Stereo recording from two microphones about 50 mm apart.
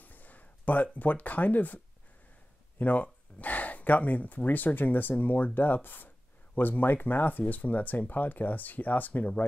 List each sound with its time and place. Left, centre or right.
0.0 s a sound: left
0.9 s speech: left
2.8 s speech: left